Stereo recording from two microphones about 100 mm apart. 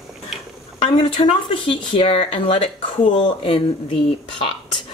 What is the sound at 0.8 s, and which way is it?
Speech, 60° left (ahead or behind).